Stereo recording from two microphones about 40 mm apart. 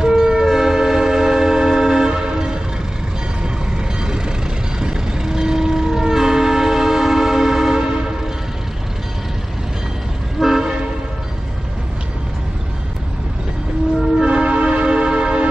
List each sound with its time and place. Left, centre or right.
0.0 s train: centre
3.4 s a sound: centre
4.7 s train: centre
10.4 s vehicle: centre
14.2 s train horn: right